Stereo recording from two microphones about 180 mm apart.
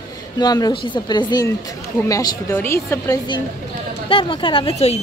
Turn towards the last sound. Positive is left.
turn(degrees=35)  # may be behind; listen again after turning